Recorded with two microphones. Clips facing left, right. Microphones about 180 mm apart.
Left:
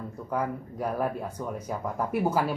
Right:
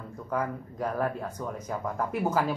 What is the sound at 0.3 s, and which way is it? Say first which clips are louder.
A man's voice: even; 10° left (ahead or behind).